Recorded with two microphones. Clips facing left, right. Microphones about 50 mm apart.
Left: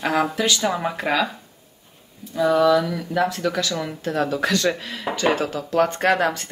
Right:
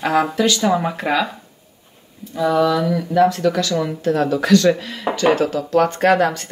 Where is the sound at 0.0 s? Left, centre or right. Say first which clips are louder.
Right 4 dB; centre.